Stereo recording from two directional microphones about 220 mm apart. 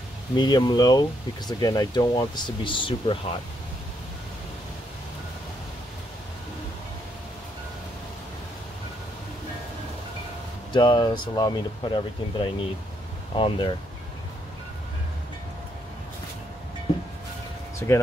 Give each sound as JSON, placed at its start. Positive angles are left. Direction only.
{"t": 0.4, "sound": "speech", "side_deg": 20}
{"t": 10.7, "sound": "speech", "side_deg": 20}
{"t": 17.7, "sound": "speech", "side_deg": 15}